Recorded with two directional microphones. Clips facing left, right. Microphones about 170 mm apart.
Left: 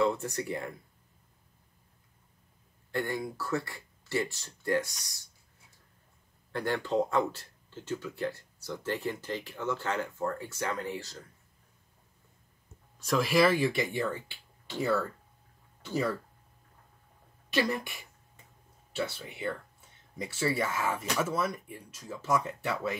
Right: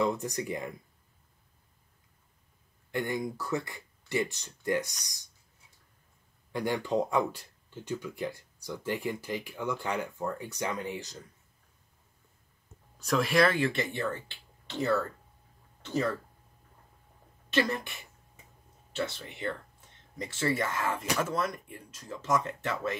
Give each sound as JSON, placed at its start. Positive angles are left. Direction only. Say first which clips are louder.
{"t": 0.0, "sound": "speech", "louder": "left 1 dB", "side_deg": -15}
{"t": 2.9, "sound": "speech", "louder": "right 1 dB", "side_deg": -20}
{"t": 6.5, "sound": "speech", "louder": "even", "side_deg": -15}
{"t": 13.0, "sound": "speech", "louder": "even", "side_deg": 0}
{"t": 17.5, "sound": "speech", "louder": "right 1 dB", "side_deg": 10}
{"t": 18.9, "sound": "speech", "louder": "even", "side_deg": 10}